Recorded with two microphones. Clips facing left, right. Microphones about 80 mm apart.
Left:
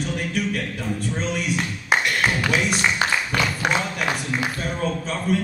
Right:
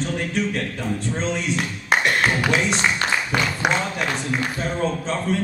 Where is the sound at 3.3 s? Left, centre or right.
Centre.